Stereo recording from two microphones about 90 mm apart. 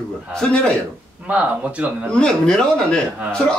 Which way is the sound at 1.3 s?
15° right (ahead or behind).